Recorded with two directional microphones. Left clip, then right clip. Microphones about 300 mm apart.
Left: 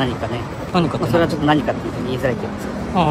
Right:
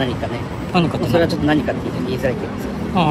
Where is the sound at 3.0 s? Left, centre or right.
Centre.